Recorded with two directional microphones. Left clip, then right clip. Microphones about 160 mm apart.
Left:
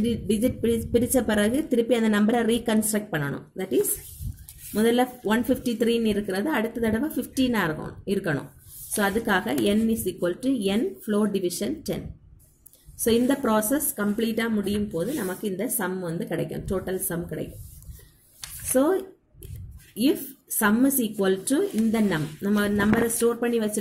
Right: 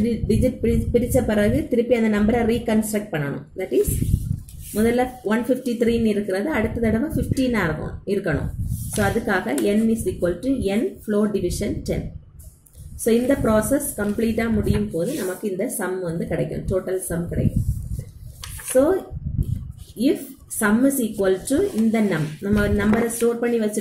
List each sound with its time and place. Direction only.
0.0 s a woman's voice: 50° left (ahead or behind)
4.7 s a woman's voice: 55° left (ahead or behind)
13.0 s a woman's voice: 55° left (ahead or behind)
18.7 s speech: 55° left (ahead or behind)
20.0 s a woman's voice: 55° left (ahead or behind)